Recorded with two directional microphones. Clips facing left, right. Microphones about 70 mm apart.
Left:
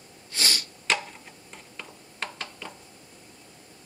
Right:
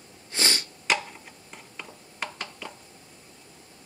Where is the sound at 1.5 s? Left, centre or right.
Centre.